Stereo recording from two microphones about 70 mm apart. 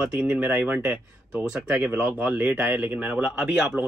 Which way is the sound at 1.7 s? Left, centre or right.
Right.